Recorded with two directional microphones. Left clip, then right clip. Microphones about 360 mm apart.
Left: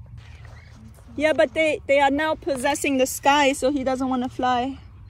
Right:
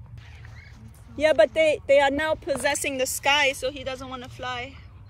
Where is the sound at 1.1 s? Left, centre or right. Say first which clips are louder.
Right 1 dB; centre.